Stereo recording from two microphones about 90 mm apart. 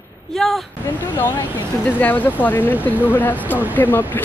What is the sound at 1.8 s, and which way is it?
Speech, 20° left (ahead or behind).